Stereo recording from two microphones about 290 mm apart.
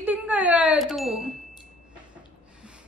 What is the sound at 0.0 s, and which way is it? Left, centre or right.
Wind chime, centre.